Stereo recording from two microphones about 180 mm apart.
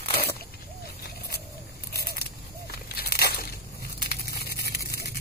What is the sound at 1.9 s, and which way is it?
Scissors, 60° left (ahead or behind).